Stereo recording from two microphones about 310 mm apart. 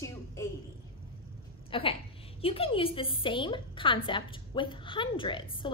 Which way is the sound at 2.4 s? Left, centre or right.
Centre.